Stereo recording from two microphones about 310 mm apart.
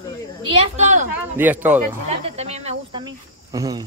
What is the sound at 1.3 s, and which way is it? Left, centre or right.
Speech, centre.